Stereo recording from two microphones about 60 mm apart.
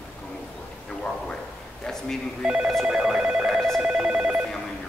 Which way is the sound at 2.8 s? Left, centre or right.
Centre.